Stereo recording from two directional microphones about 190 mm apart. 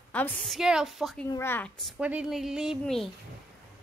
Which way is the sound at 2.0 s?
5° right (ahead or behind).